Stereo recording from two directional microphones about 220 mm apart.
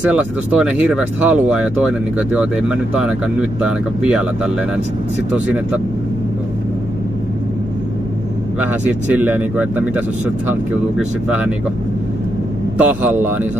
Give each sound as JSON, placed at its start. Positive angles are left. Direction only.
{"t": 0.0, "sound": "speech", "side_deg": -5}
{"t": 8.5, "sound": "speech", "side_deg": -10}
{"t": 11.2, "sound": "speech", "side_deg": -5}
{"t": 12.7, "sound": "speech", "side_deg": -5}